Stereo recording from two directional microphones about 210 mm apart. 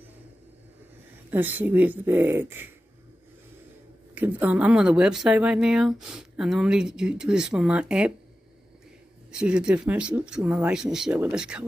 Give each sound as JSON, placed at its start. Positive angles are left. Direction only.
{"t": 1.3, "sound": "speech", "side_deg": -10}
{"t": 4.1, "sound": "speech", "side_deg": -10}
{"t": 9.3, "sound": "speech", "side_deg": -5}